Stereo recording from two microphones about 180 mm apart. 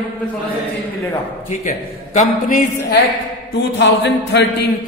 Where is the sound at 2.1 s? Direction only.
50° left (ahead or behind).